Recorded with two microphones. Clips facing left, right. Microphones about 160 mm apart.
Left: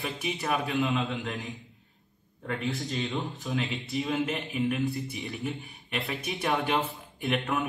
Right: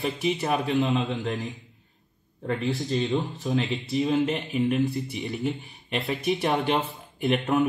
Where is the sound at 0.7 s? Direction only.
35° right (ahead or behind).